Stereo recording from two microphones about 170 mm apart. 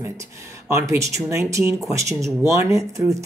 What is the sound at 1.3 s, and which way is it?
Speech, 15° right (ahead or behind).